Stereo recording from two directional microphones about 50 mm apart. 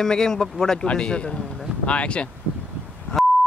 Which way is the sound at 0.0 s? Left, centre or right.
Centre.